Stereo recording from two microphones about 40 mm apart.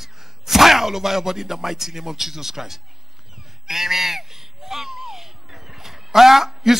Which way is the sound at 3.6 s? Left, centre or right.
Centre.